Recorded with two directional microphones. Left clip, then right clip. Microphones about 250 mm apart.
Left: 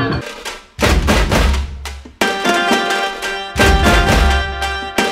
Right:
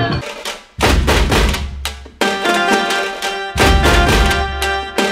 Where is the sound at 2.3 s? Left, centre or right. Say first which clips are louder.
Right 1 dB; centre.